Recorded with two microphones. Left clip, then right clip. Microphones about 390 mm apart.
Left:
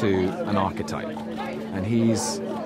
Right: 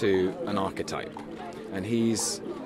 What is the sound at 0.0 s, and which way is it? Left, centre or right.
Music, right.